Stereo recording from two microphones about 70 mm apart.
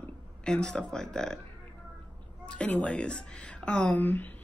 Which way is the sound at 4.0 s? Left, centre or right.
Left.